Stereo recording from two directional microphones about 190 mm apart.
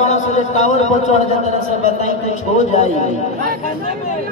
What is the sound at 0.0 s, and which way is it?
A man's voice, 35° left (ahead or behind).